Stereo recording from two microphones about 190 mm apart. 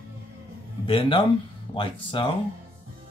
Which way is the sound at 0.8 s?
25° left (ahead or behind).